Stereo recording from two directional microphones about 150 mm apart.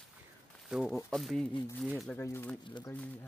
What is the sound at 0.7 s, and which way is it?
Speech, centre (ahead or behind).